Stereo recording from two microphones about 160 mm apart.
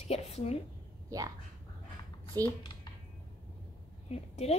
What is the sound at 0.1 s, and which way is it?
Speech, 40° left (ahead or behind).